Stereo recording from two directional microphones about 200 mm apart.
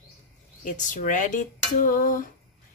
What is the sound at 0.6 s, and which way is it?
A woman's voice, 40° left (ahead or behind).